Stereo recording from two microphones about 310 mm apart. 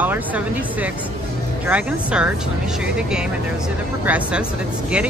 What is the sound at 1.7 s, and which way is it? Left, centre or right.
Speech, centre.